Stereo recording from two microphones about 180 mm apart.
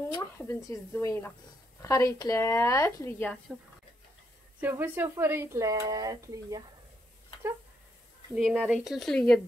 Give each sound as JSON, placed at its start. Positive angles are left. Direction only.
{"t": 0.1, "sound": "speech", "side_deg": 15}
{"t": 4.6, "sound": "speech", "side_deg": -10}
{"t": 8.4, "sound": "speech", "side_deg": -5}